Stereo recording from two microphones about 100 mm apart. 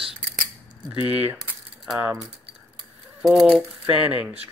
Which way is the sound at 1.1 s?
15° right (ahead or behind).